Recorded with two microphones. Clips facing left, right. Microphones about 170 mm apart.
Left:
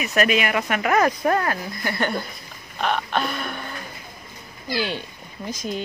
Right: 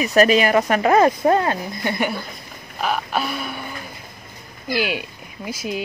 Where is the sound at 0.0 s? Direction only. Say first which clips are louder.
Right 6 dB; 35° right (ahead or behind).